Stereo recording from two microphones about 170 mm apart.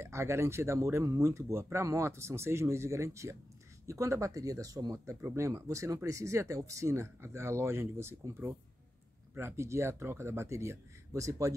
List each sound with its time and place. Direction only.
0.0 s speech: 15° right (ahead or behind)